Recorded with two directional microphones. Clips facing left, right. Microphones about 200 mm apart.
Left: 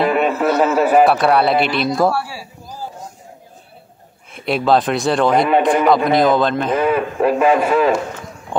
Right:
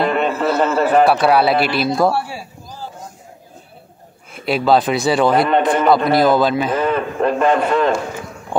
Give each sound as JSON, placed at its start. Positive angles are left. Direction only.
{"t": 0.0, "sound": "a man's voice", "side_deg": 5}
{"t": 2.1, "sound": "a sound", "side_deg": -25}
{"t": 4.3, "sound": "a man's voice", "side_deg": 0}
{"t": 6.8, "sound": "a man's voice", "side_deg": 10}